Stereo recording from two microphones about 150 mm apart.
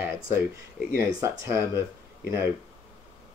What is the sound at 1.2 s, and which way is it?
Speech, 20° right (ahead or behind).